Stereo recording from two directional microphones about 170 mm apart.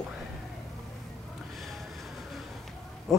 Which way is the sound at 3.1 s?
Centre (ahead or behind).